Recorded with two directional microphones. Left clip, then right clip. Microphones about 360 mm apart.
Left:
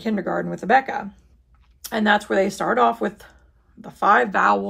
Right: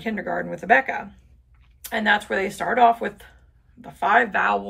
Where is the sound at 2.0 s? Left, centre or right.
Centre.